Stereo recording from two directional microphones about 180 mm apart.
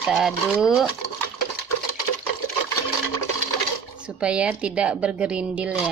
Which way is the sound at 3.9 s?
5° right (ahead or behind).